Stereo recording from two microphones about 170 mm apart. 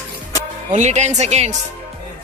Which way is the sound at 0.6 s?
45° right (ahead or behind).